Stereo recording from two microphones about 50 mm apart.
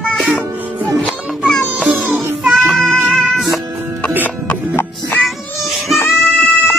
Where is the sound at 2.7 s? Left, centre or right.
Centre.